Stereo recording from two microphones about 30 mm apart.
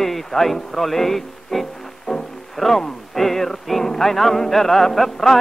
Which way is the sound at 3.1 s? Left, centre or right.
Centre.